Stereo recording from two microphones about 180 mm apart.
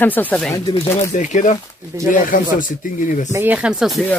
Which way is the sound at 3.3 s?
10° right (ahead or behind).